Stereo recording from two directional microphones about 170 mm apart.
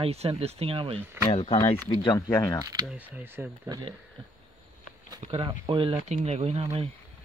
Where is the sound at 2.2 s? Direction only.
20° left (ahead or behind).